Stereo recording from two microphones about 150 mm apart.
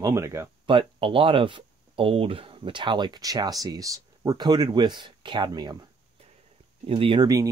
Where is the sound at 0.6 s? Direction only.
35° right (ahead or behind).